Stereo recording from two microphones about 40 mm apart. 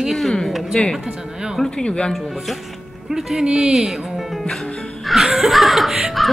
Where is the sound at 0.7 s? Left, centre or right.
Left.